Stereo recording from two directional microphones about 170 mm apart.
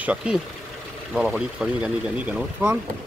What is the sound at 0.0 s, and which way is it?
Speech, 5° right (ahead or behind).